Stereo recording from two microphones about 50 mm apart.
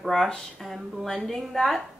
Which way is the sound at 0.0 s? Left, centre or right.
Centre.